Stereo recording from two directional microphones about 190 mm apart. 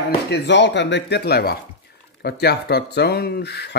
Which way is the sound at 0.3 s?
65° left (ahead or behind).